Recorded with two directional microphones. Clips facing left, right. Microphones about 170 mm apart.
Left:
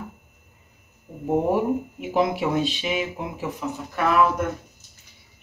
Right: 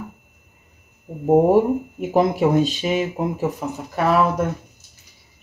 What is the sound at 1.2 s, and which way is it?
Speech, 45° right (ahead or behind).